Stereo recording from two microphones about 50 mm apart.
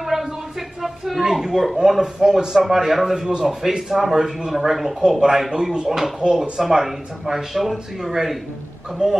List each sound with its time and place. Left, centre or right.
0.0 s a sound: centre
1.8 s speech: centre
9.0 s speech: centre